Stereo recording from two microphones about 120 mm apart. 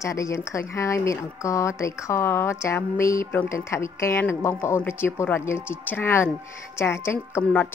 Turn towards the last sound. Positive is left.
turn(degrees=15)  # may be behind; listen again after turning